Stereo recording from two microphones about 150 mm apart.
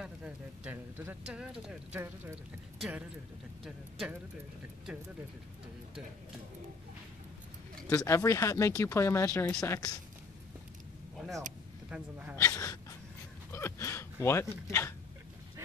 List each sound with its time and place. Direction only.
0.0 s a sound: 10° right (ahead or behind)
1.7 s speech: 10° right (ahead or behind)
7.9 s speech: 20° left (ahead or behind)
11.1 s speech: centre (ahead or behind)
12.4 s speech: 20° left (ahead or behind)
13.5 s a sound: 15° left (ahead or behind)
14.2 s speech: 15° left (ahead or behind)